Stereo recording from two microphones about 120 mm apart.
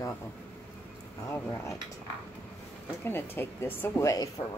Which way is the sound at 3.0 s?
20° left (ahead or behind).